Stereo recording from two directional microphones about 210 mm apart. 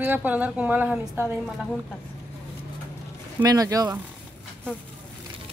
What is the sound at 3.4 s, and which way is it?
Speech, 15° right (ahead or behind).